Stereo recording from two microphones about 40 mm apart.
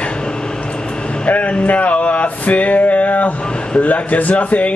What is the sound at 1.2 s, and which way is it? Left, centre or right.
Male singing, left.